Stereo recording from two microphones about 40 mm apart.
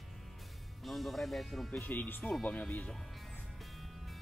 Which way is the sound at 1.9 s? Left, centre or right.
Left.